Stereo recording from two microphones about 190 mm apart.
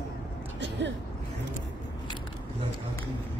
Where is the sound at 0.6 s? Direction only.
70° right (ahead or behind).